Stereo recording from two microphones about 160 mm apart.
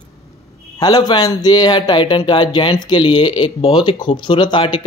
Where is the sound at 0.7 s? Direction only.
25° left (ahead or behind).